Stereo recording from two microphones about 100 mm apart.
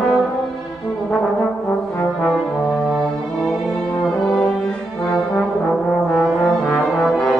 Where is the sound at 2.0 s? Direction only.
10° left (ahead or behind).